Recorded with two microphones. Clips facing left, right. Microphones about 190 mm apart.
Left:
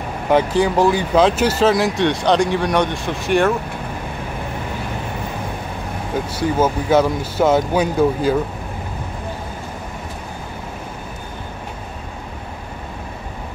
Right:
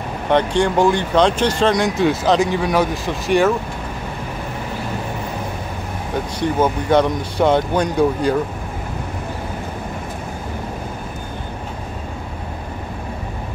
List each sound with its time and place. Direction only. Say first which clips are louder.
0.3 s speech: left 1 dB; 5° left (ahead or behind)
6.1 s speech: even; 5° left (ahead or behind)